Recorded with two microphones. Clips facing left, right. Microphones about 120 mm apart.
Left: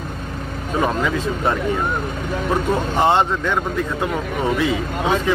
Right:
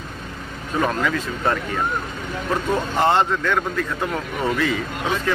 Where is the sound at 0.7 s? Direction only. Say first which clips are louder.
Left 1 dB; 20° left (ahead or behind).